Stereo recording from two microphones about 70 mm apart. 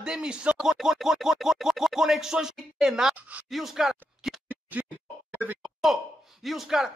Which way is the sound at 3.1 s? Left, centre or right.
Right.